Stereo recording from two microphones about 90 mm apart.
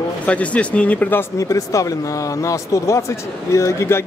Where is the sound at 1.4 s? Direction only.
35° left (ahead or behind).